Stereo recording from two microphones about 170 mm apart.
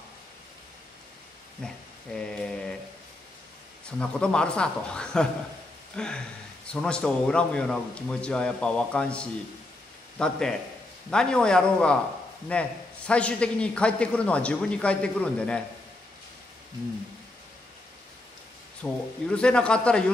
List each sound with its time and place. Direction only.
1.6 s a man's voice: 5° left (ahead or behind)
4.0 s a man's voice: 5° left (ahead or behind)
18.8 s a man's voice: 5° left (ahead or behind)